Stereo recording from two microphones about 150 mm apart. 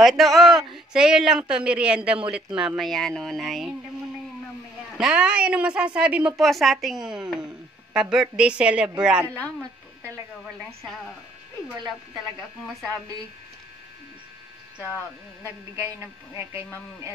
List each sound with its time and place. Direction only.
0.0 s a woman's voice: centre (ahead or behind)
4.9 s a woman's voice: 5° right (ahead or behind)
9.3 s speech: 10° left (ahead or behind)
12.4 s a woman's voice: centre (ahead or behind)